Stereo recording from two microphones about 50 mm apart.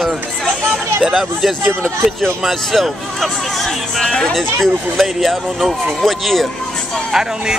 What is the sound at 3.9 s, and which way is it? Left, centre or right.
Speech, centre.